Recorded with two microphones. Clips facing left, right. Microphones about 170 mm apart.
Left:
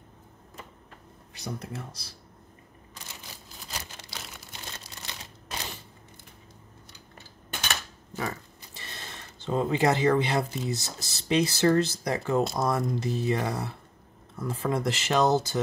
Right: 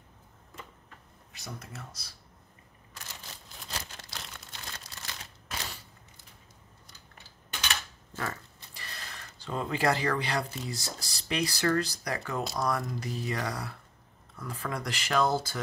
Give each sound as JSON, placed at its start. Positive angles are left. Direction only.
{"t": 1.3, "sound": "speech", "side_deg": 30}
{"t": 4.1, "sound": "crumpling", "side_deg": 5}
{"t": 4.6, "sound": "a sound", "side_deg": 20}
{"t": 8.1, "sound": "pig", "side_deg": 15}
{"t": 8.7, "sound": "speech", "side_deg": 25}